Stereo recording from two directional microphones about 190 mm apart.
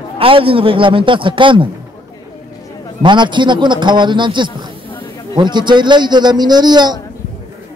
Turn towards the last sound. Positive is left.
turn(degrees=-20)  # may be behind; listen again after turning